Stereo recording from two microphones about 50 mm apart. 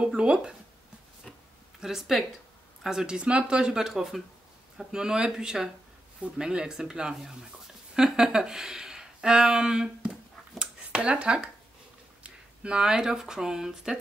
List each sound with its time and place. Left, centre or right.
0.0 s speech: centre
1.8 s speech: centre
10.6 s finger snapping: right
12.2 s speech: centre